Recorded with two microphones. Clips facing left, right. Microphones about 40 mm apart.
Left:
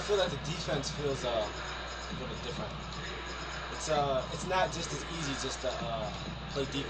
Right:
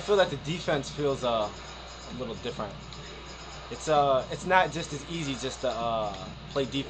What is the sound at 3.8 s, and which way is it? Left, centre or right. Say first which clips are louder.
Speech: right 7 dB; right.